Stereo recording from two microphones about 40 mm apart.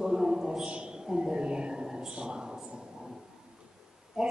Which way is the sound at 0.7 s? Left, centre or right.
Right.